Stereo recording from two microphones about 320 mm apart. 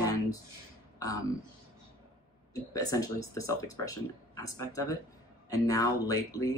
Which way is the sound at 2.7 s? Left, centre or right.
Centre.